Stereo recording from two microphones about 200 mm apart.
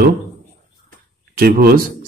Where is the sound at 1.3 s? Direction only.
50° right (ahead or behind).